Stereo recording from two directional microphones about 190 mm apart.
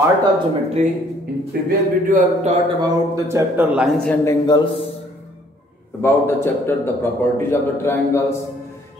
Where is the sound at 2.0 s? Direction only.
40° right (ahead or behind).